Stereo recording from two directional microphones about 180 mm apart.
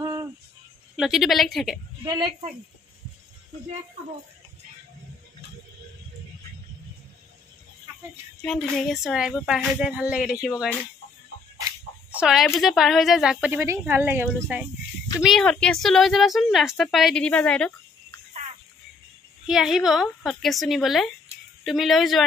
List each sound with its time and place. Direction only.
0.0 s music: 20° right (ahead or behind)
0.9 s a woman's voice: centre (ahead or behind)
8.7 s a woman's voice: centre (ahead or behind)
12.1 s a woman's voice: 5° right (ahead or behind)
15.2 s a woman's voice: 5° left (ahead or behind)
19.4 s a woman's voice: 5° right (ahead or behind)